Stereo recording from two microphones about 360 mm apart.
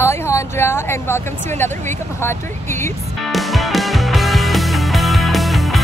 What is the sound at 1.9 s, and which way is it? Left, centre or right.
Music, centre.